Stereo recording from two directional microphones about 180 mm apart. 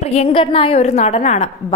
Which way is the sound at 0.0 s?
35° left (ahead or behind).